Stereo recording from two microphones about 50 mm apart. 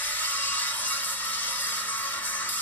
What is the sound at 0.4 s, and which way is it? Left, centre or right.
Music, left.